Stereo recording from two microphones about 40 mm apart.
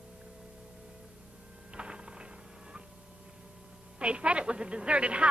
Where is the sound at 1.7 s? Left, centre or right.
Right.